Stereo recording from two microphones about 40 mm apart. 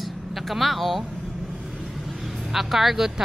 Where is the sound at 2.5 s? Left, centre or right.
Centre.